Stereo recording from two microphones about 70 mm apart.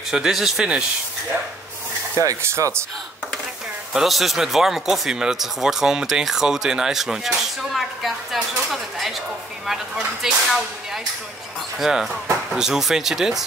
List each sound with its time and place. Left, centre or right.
0.1 s speech: centre
2.1 s speech: right
3.9 s speech: centre
11.8 s speech: centre